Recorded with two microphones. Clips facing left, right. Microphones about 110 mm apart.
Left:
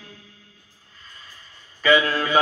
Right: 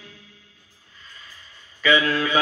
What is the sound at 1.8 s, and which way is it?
Mantra, 35° left (ahead or behind).